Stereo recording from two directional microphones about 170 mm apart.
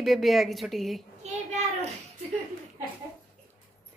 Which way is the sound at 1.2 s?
40° right (ahead or behind).